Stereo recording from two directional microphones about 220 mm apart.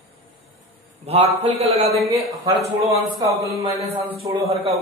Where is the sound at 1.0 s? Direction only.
25° right (ahead or behind).